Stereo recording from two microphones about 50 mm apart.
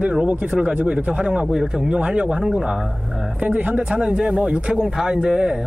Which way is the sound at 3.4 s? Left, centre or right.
Right.